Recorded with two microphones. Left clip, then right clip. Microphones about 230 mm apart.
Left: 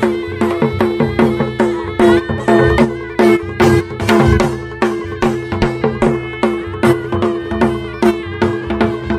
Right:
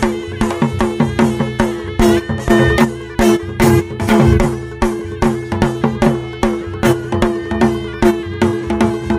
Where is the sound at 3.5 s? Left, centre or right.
Right.